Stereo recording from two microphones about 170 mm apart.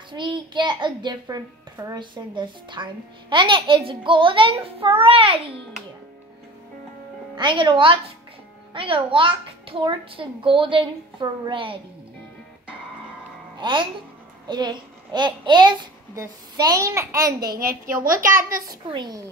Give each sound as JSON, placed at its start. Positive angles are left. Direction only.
{"t": 0.1, "sound": "a child's voice", "side_deg": -30}
{"t": 7.3, "sound": "a child's voice", "side_deg": -30}
{"t": 13.6, "sound": "a child's voice", "side_deg": -30}
{"t": 17.6, "sound": "a woman's voice", "side_deg": -55}
{"t": 18.7, "sound": "a child's voice", "side_deg": -25}